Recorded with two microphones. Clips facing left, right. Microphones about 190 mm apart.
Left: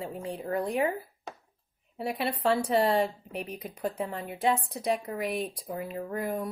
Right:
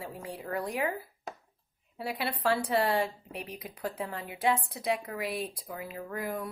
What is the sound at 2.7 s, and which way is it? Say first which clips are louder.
A woman's voice: left 3 dB; 25° left (ahead or behind).